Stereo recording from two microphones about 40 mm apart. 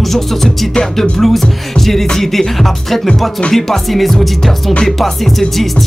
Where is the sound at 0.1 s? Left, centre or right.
Centre.